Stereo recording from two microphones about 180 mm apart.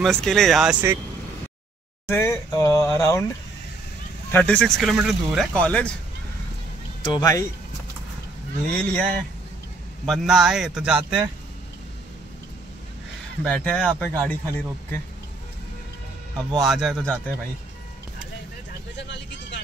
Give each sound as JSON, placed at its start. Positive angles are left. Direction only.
{"t": 0.0, "sound": "speech", "side_deg": 0}
{"t": 2.0, "sound": "speech", "side_deg": 15}
{"t": 4.3, "sound": "speech", "side_deg": 5}
{"t": 7.0, "sound": "speech", "side_deg": 25}
{"t": 8.6, "sound": "speech", "side_deg": 5}
{"t": 13.4, "sound": "speech", "side_deg": 5}
{"t": 16.6, "sound": "speech", "side_deg": 0}
{"t": 18.9, "sound": "vehicle", "side_deg": 75}